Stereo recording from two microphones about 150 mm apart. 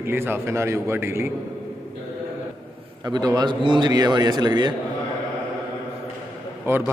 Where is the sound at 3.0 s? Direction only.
25° right (ahead or behind).